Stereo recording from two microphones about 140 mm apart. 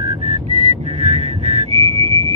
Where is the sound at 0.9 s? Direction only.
50° right (ahead or behind).